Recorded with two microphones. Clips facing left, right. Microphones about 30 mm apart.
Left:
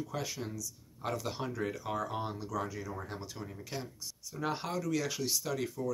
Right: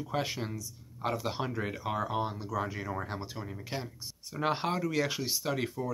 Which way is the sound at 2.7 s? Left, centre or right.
Right.